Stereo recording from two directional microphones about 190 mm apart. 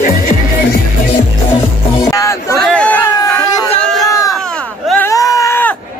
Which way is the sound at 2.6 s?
5° left (ahead or behind).